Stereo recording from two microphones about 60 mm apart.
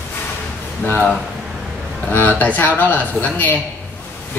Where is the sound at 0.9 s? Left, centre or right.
Left.